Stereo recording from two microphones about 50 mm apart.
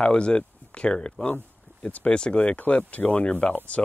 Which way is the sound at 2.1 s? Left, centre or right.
Centre.